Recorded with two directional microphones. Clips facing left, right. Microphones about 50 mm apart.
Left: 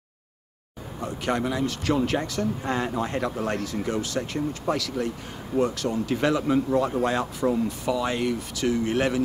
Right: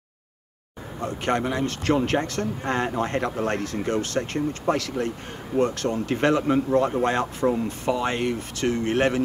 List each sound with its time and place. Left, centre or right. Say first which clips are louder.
1.0 s speech: right 2 dB; right